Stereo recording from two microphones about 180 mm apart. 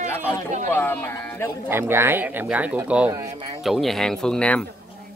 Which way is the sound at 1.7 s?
15° right (ahead or behind).